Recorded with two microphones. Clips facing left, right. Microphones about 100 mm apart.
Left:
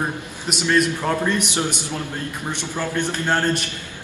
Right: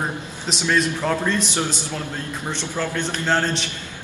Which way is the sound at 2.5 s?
15° left (ahead or behind).